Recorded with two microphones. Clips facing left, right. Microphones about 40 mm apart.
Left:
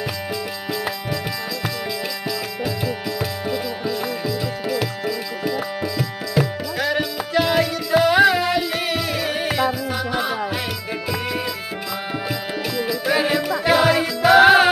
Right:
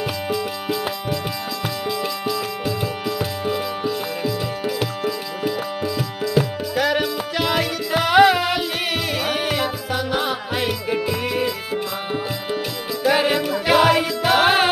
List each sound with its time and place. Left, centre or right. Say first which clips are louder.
0.3 s music: right 3 dB; right
3.1 s music: right 1 dB; centre
5.5 s music: even; centre
6.8 s music: right 2 dB; right
13.1 s music: right 1 dB; right
14.4 s music: left 4 dB; centre